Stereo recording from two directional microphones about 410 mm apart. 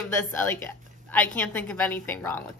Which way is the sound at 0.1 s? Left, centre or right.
Centre.